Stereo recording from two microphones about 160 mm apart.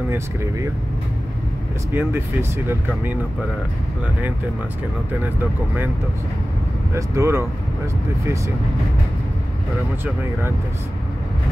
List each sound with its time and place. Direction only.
0.1 s speech: 15° right (ahead or behind)
1.9 s speech: 15° right (ahead or behind)
7.0 s speech: 15° right (ahead or behind)